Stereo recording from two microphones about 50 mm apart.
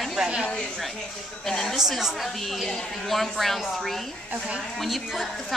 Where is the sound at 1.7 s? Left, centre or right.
Centre.